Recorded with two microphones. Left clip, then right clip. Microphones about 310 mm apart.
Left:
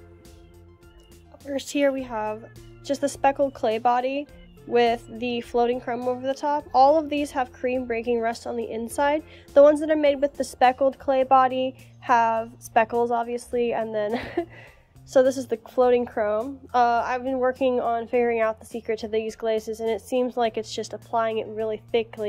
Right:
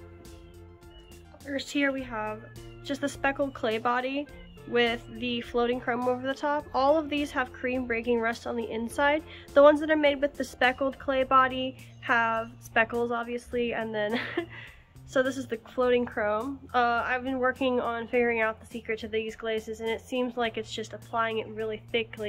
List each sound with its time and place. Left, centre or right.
1.5 s a woman's voice: left